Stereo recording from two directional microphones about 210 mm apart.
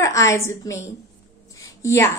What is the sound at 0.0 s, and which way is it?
Speech, 15° left (ahead or behind).